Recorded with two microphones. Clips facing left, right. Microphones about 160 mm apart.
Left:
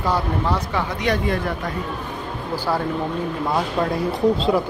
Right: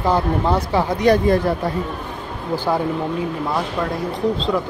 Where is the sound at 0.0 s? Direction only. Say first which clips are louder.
Right 4 dB; 25° right (ahead or behind).